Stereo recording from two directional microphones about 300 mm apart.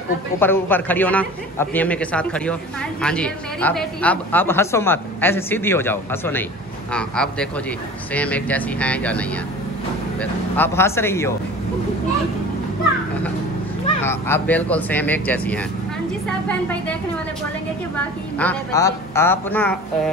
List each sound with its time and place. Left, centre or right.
0.4 s a man's voice: centre
10.5 s speech: centre
14.0 s a man's voice: centre
18.4 s speech: centre